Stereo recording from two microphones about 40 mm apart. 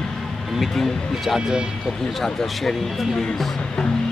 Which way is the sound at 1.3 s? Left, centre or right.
Centre.